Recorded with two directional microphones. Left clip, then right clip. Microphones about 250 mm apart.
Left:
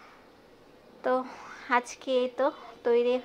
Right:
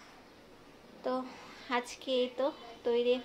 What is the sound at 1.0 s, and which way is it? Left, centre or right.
A woman's voice, left.